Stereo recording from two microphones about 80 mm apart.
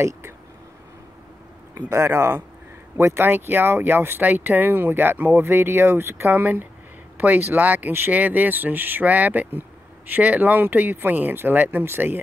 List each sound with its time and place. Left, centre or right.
1.9 s speech: right